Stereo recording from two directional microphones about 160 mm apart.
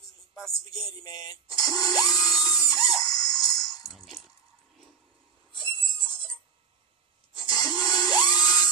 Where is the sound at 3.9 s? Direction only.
Centre (ahead or behind).